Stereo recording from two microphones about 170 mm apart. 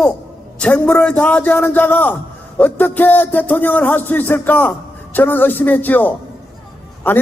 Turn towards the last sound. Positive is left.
turn(degrees=10)  # may be behind; listen again after turning